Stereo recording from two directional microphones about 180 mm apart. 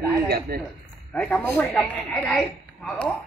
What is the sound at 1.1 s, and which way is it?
Speech, 5° left (ahead or behind).